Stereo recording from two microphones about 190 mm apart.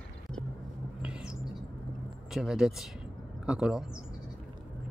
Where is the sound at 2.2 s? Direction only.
Centre (ahead or behind).